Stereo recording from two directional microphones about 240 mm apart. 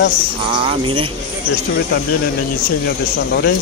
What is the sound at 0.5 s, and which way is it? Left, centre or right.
Speech, right.